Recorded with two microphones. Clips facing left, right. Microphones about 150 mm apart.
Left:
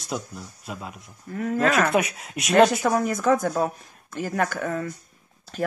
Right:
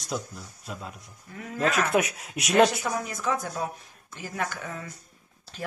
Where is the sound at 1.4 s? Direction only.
55° left (ahead or behind).